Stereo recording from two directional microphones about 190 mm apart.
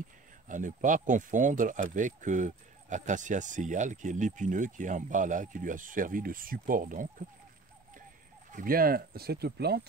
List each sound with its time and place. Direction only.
0.5 s speech: 40° right (ahead or behind)
8.5 s speech: 45° right (ahead or behind)